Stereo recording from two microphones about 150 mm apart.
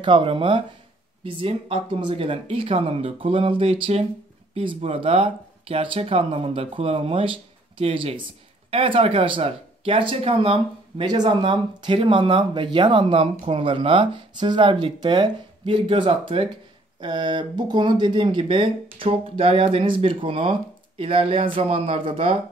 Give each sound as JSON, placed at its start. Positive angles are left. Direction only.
{"t": 0.0, "sound": "speech", "side_deg": -35}